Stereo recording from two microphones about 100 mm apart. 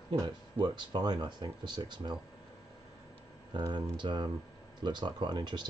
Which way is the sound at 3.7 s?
50° right (ahead or behind).